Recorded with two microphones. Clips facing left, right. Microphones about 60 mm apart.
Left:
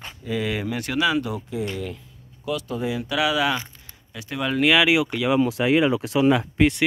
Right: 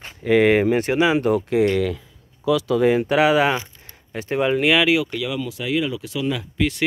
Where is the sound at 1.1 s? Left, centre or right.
Right.